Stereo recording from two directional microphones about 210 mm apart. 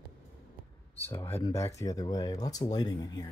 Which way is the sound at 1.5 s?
15° left (ahead or behind).